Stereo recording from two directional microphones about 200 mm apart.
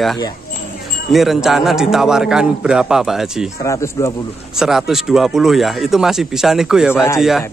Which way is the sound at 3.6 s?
15° left (ahead or behind).